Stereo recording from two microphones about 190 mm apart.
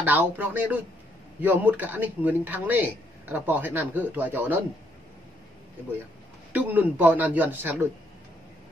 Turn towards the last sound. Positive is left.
turn(degrees=-10)  # may be behind; listen again after turning